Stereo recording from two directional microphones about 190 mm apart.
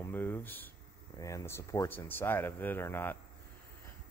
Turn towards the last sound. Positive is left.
turn(degrees=10)  # may be behind; listen again after turning